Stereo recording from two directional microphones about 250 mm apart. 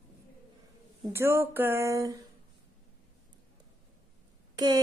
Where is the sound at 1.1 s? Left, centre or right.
Centre.